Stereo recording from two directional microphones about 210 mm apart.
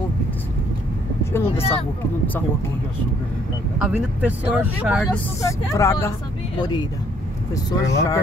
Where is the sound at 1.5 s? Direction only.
30° left (ahead or behind).